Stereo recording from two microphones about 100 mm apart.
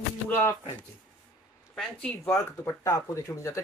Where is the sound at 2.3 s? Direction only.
30° left (ahead or behind).